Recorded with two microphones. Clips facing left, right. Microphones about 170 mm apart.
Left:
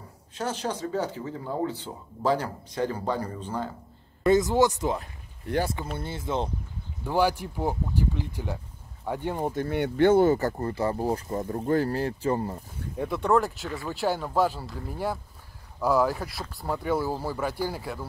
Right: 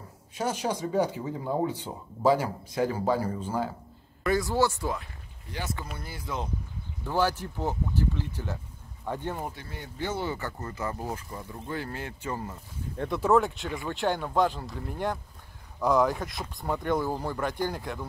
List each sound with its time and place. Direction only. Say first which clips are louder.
0.3 s speech: right 1 dB; 10° right (ahead or behind)
4.2 s speech: left 5 dB; 20° left (ahead or behind)
5.5 s speech: left 12 dB; 70° left (ahead or behind)
5.9 s speech: left 6 dB; 25° left (ahead or behind)
7.1 s speech: left 3 dB; 15° left (ahead or behind)
9.6 s speech: left 14 dB; 65° left (ahead or behind); by 12.5 s 35° left (ahead or behind)
12.9 s speech: even; 10° left (ahead or behind)